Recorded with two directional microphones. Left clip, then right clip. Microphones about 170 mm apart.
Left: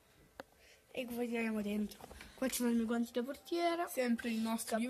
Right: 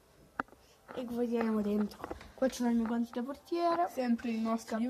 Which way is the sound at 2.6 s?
20° left (ahead or behind).